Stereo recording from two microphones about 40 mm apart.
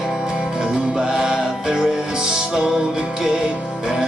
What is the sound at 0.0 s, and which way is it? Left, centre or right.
Music, centre.